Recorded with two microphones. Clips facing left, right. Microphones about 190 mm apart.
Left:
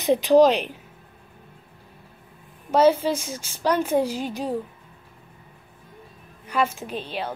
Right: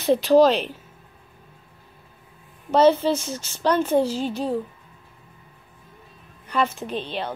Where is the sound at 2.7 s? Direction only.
10° left (ahead or behind).